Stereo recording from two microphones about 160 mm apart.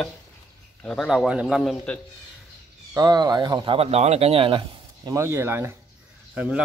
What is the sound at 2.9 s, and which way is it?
Speech, 25° right (ahead or behind).